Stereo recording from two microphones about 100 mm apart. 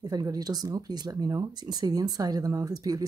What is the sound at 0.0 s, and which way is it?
Speech, 40° right (ahead or behind).